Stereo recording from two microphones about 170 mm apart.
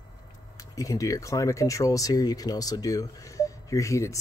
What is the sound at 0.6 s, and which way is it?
Speech, 20° left (ahead or behind).